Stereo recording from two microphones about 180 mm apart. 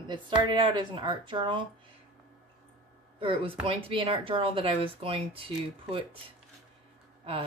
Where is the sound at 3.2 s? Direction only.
30° right (ahead or behind).